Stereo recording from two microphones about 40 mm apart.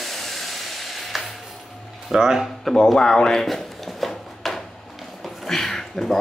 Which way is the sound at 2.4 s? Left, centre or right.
Centre.